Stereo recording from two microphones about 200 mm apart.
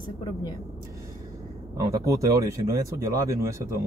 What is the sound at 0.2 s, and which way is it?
Speech, 20° left (ahead or behind).